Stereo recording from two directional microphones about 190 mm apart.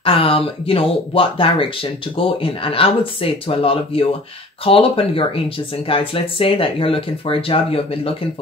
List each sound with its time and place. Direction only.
0.0 s speech: 30° left (ahead or behind)